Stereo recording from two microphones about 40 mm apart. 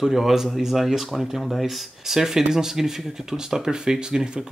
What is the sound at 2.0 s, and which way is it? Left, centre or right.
Speech, centre.